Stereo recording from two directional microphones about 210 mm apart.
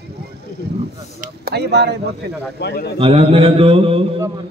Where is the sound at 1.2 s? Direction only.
50° right (ahead or behind).